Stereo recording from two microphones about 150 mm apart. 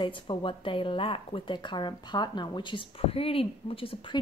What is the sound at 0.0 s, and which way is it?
Speech, 35° left (ahead or behind).